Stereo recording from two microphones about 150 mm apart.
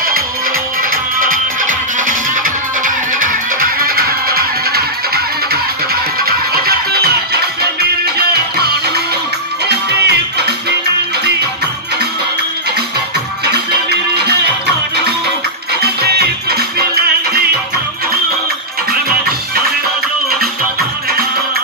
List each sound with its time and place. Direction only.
1.2 s music: 65° right (ahead or behind); by 10.5 s 90° right
13.5 s music: 90° right
15.8 s music: 90° right
18.9 s music: 85° right